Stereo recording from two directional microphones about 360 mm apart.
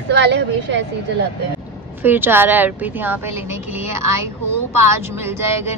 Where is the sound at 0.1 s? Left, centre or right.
Right.